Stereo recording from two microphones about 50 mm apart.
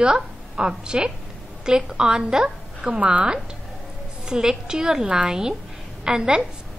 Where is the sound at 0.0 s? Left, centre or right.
Centre.